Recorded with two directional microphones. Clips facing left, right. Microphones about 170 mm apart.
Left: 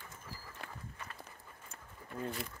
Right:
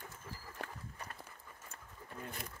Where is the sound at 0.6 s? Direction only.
45° right (ahead or behind).